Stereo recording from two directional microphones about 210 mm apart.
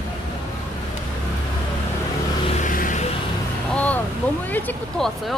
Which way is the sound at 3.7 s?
5° left (ahead or behind).